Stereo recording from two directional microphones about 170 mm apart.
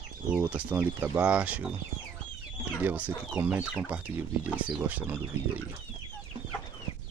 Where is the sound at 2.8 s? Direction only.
10° right (ahead or behind).